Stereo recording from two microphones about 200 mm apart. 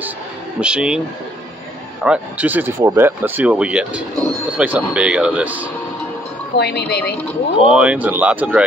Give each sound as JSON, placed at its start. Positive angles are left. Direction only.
{"t": 0.6, "sound": "speech", "side_deg": -5}
{"t": 2.0, "sound": "speech", "side_deg": -10}
{"t": 6.5, "sound": "a woman's voice", "side_deg": 55}
{"t": 7.7, "sound": "speech", "side_deg": -5}